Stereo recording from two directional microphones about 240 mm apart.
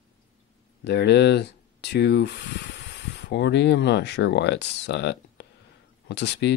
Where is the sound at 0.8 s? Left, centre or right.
Left.